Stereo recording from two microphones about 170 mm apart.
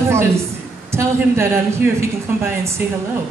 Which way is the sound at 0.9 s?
15° right (ahead or behind).